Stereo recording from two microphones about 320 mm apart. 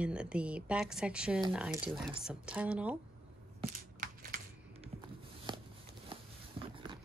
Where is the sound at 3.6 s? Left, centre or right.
Right.